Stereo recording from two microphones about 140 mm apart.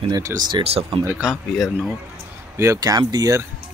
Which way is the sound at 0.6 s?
40° right (ahead or behind).